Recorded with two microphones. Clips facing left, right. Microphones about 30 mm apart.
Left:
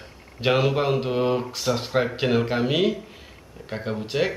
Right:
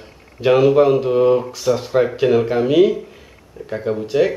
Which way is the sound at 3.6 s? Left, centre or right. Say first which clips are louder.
Right 7 dB; centre.